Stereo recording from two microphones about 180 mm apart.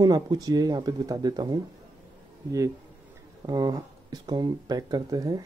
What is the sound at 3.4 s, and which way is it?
Speech, 20° right (ahead or behind).